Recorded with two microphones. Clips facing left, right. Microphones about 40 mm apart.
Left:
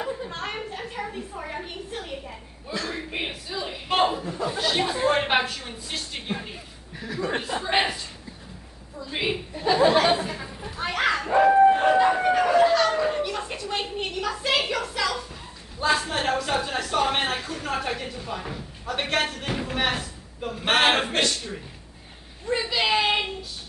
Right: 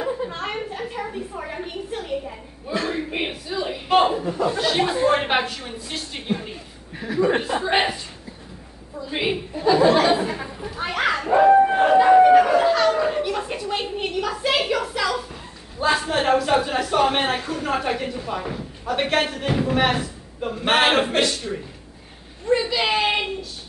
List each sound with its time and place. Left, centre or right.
0.0 s a sound: centre
2.7 s a man's voice: right
3.2 s a sound: centre
4.1 s chuckle: right
4.5 s a woman's voice: centre
7.0 s speech: right
7.6 s speech: centre
8.9 s a woman's voice: centre
9.6 s a woman's voice: centre
10.1 s chatter: right
10.6 s dog: centre
15.8 s speech: centre
22.5 s a woman's voice: centre